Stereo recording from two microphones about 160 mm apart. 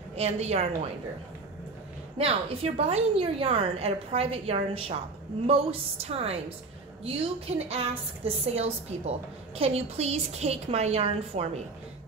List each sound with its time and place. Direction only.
0.1 s a woman's voice: 40° right (ahead or behind)
2.1 s a woman's voice: 40° right (ahead or behind)